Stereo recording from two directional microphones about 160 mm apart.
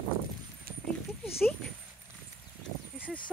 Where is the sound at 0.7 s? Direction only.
70° right (ahead or behind).